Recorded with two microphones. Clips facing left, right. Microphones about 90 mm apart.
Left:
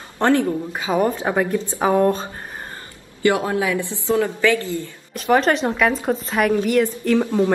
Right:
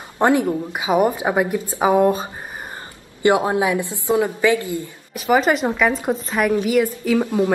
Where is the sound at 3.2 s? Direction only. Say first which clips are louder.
Right 2 dB; 20° right (ahead or behind).